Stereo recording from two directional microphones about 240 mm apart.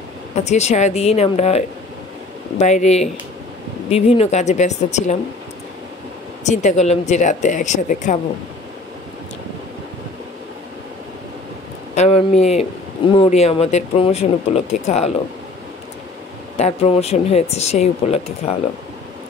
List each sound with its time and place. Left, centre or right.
0.4 s speech: left
6.4 s speech: left
11.9 s speech: left
16.5 s speech: left